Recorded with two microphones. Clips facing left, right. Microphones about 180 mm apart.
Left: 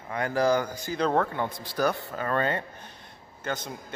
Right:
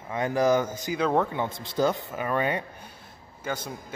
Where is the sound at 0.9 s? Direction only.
10° right (ahead or behind).